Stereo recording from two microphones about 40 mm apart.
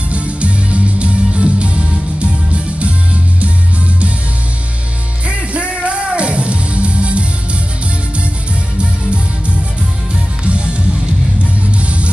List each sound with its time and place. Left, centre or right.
0.1 s music: right
5.3 s music: right
9.0 s music: right
11.8 s music: right